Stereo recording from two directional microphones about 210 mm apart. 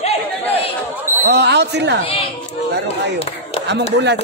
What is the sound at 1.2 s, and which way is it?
Speech, 55° right (ahead or behind).